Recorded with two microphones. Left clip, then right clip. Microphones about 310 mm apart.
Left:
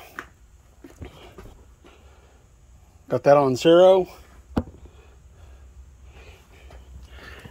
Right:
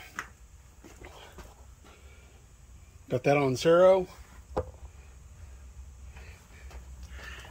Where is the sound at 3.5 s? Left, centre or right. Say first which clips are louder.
Left 6 dB; left.